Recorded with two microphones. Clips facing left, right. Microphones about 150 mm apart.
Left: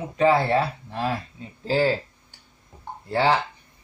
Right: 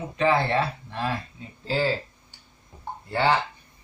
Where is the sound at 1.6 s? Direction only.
45° left (ahead or behind).